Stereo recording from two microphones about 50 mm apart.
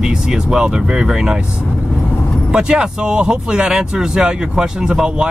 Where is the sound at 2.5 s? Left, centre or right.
Centre.